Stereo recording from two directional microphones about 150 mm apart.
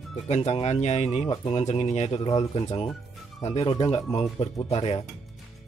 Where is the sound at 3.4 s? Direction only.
45° left (ahead or behind).